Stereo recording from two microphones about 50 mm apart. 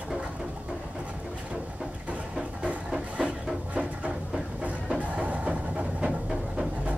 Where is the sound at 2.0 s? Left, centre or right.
Right.